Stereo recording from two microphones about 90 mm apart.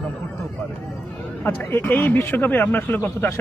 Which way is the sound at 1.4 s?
20° left (ahead or behind).